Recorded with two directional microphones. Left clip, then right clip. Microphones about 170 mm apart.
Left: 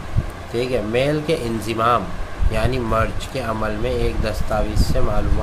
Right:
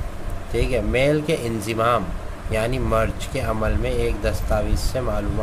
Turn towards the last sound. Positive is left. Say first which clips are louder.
# left 2 dB
turn(degrees=-20)  # may be behind; listen again after turning